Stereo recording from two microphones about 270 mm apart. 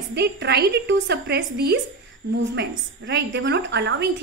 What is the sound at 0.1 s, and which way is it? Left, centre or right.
A woman's voice, right.